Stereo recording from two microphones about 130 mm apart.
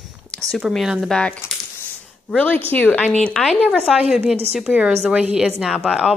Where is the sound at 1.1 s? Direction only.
10° left (ahead or behind).